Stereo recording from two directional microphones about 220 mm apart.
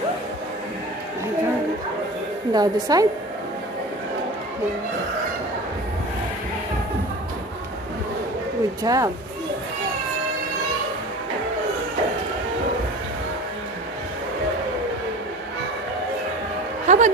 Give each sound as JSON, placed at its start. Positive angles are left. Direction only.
{"t": 2.5, "sound": "a woman's voice", "side_deg": -15}
{"t": 8.8, "sound": "a woman's voice", "side_deg": -15}
{"t": 16.8, "sound": "music", "side_deg": -35}